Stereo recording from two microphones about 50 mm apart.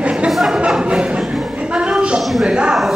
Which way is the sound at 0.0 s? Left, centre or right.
Right.